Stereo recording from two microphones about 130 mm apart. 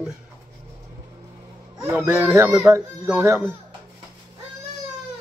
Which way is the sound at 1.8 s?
15° right (ahead or behind).